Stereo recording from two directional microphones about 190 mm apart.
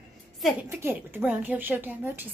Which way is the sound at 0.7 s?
10° right (ahead or behind).